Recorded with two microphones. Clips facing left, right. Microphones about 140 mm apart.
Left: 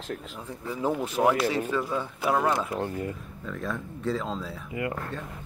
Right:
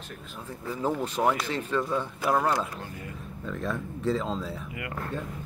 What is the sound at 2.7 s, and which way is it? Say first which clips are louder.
Speech: left 10 dB; 65° left (ahead or behind).